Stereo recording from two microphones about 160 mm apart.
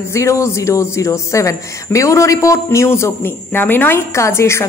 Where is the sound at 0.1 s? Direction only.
20° left (ahead or behind).